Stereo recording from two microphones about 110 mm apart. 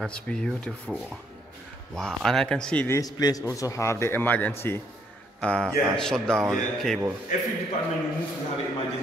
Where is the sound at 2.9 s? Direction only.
35° left (ahead or behind); by 6.4 s 5° left (ahead or behind).